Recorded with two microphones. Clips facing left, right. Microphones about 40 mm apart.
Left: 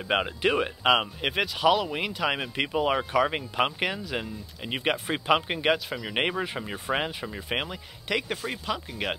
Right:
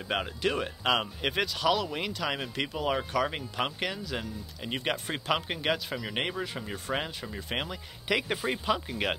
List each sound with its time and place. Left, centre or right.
0.1 s speech: left
5.9 s speech: centre
6.1 s speech: left
8.1 s speech: centre